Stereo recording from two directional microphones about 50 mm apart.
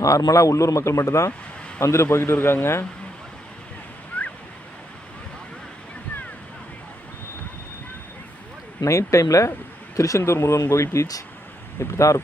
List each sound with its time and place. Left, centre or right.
0.0 s speech: left
1.8 s a man's voice: left
4.1 s waves: left
8.8 s speech: left
9.9 s speech: left